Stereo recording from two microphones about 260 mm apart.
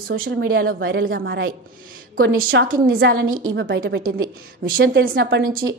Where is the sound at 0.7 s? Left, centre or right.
Right.